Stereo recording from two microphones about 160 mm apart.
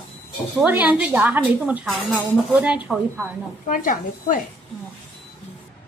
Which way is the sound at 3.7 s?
60° left (ahead or behind).